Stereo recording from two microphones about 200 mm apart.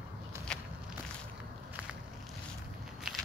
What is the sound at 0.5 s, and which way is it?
Walk, 5° left (ahead or behind).